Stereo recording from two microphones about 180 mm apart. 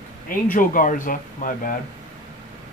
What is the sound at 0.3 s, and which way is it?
Speech, 50° left (ahead or behind).